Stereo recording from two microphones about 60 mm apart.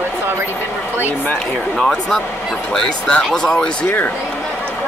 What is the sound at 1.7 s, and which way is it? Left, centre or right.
Speech, centre.